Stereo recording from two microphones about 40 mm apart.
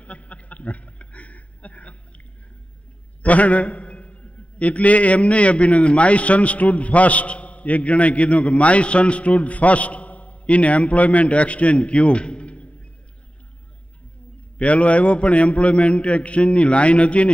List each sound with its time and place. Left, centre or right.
0.0 s a sound: left
3.2 s a man's voice: left
14.6 s a man's voice: left